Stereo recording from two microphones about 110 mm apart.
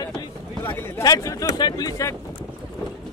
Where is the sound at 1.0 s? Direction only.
30° left (ahead or behind).